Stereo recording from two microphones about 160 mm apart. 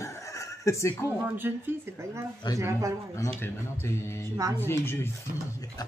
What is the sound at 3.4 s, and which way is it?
Speech, 15° left (ahead or behind).